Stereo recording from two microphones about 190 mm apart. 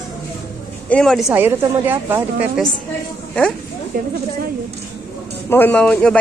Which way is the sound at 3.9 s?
50° right (ahead or behind).